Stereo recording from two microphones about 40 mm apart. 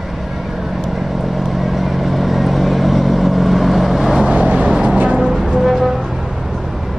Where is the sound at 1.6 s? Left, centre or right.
Centre.